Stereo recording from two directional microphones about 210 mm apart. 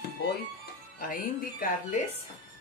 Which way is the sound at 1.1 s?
40° left (ahead or behind).